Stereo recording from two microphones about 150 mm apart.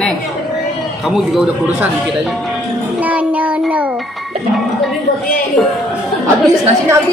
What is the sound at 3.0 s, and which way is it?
Child singing, 10° right (ahead or behind).